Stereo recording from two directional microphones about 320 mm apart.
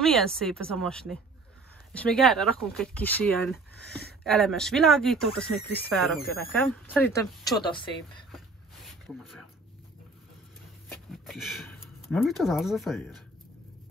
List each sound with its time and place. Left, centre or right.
0.0 s speech: centre
3.5 s speech: left
4.2 s speech: centre
9.0 s speech: centre
10.9 s speech: centre